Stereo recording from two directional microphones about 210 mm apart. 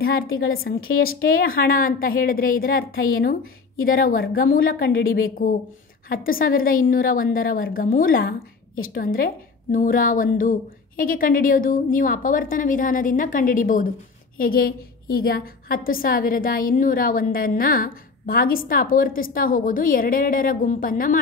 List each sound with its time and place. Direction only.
0.0 s a woman's voice: 45° left (ahead or behind)